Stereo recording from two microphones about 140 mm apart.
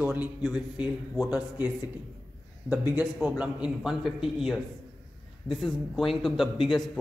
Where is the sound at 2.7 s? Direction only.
10° right (ahead or behind).